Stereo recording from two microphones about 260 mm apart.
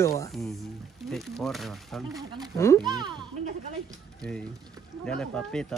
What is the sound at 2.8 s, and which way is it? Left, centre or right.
Speech, centre.